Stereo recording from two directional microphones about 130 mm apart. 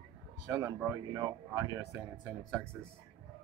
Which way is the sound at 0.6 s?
25° right (ahead or behind).